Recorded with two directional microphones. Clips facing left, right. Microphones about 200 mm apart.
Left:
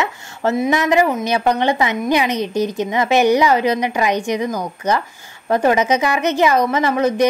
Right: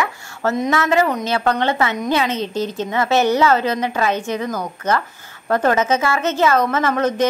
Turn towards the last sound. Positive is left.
turn(degrees=10)  # may be behind; listen again after turning